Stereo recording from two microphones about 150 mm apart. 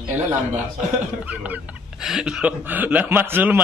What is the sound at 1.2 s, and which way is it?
Speech, 10° right (ahead or behind).